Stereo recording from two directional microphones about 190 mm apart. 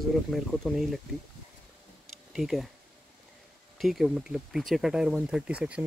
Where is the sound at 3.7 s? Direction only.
Centre (ahead or behind).